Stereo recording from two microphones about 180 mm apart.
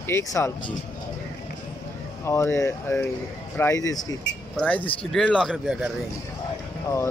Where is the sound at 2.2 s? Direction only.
15° left (ahead or behind).